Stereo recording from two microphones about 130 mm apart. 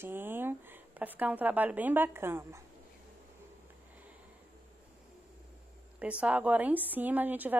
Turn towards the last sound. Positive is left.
turn(degrees=-15)  # may be behind; listen again after turning